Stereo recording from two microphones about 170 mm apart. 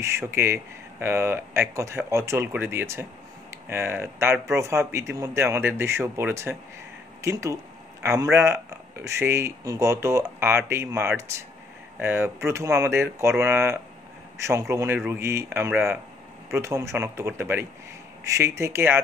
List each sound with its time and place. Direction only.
0.2 s speech: 15° right (ahead or behind)